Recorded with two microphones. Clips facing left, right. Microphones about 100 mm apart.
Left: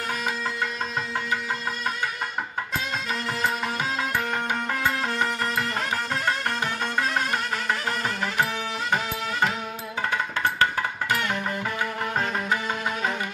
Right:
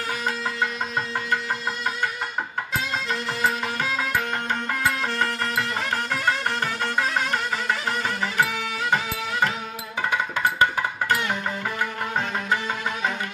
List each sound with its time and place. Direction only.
5.1 s music: 10° left (ahead or behind)
10.0 s music: 15° right (ahead or behind)